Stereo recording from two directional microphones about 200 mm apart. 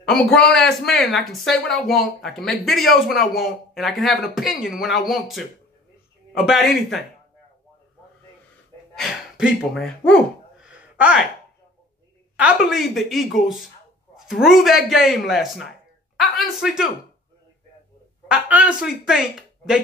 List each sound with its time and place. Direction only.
0.5 s speech: 5° left (ahead or behind)
8.9 s speech: centre (ahead or behind)
10.6 s a sound: 5° right (ahead or behind)
12.4 s a woman's voice: 5° right (ahead or behind)
18.3 s speech: 5° right (ahead or behind)